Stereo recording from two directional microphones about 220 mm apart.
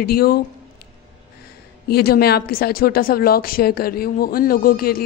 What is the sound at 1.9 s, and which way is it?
Speech, 45° left (ahead or behind).